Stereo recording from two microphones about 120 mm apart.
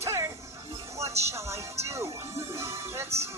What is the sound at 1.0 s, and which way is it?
Speech, 25° right (ahead or behind).